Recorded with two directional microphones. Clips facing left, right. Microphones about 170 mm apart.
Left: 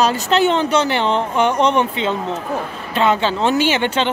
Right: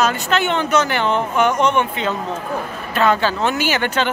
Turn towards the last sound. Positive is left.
turn(degrees=25)  # may be behind; listen again after turning